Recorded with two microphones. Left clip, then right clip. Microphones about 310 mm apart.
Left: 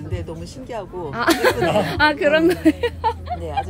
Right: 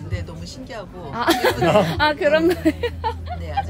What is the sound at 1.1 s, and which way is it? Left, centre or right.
Speech, centre.